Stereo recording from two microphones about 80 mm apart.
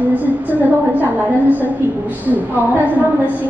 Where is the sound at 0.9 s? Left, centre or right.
Right.